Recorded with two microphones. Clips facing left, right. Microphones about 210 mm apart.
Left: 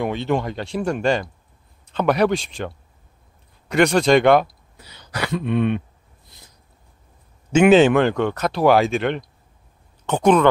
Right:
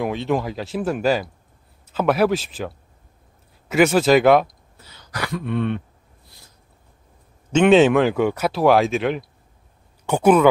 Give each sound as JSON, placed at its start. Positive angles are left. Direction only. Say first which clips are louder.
{"t": 0.0, "sound": "speech", "louder": "even", "side_deg": 0}
{"t": 4.7, "sound": "speech", "louder": "left 2 dB", "side_deg": 20}
{"t": 6.2, "sound": "a sound", "louder": "left 1 dB", "side_deg": 20}
{"t": 7.5, "sound": "speech", "louder": "left 1 dB", "side_deg": 5}